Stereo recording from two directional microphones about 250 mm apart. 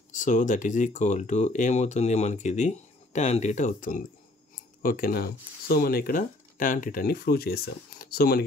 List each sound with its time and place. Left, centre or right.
0.1 s speech: left